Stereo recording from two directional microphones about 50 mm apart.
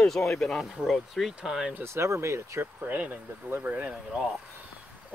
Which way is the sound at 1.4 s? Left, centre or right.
Centre.